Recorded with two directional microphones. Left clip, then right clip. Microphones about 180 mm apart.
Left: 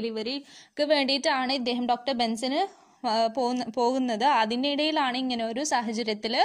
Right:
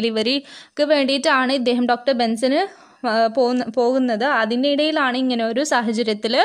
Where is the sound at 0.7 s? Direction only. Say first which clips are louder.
Right 7 dB; 10° right (ahead or behind).